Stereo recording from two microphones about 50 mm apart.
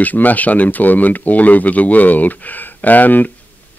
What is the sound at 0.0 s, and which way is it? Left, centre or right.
Speech, left.